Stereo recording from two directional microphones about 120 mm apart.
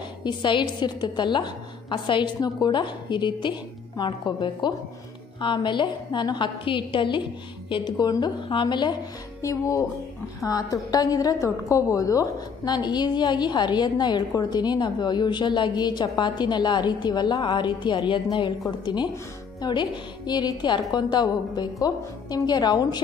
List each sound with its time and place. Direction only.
0.2 s a woman's voice: 40° left (ahead or behind)
9.4 s a woman's voice: 25° left (ahead or behind)
19.6 s a woman's voice: 35° left (ahead or behind)